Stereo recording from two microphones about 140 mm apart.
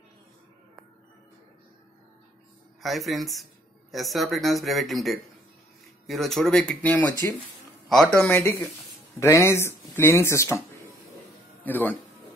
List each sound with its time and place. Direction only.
2.8 s speech: centre (ahead or behind); by 10.6 s 20° left (ahead or behind)
11.6 s speech: 15° left (ahead or behind)